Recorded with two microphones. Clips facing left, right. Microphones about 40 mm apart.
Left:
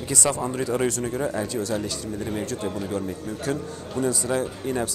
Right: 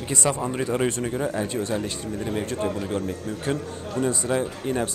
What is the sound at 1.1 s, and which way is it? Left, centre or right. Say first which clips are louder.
Speech: even; centre.